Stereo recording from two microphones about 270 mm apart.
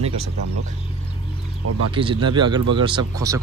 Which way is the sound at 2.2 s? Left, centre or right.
Centre.